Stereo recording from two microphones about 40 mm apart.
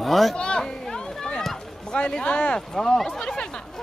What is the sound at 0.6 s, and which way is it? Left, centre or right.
Speech, centre.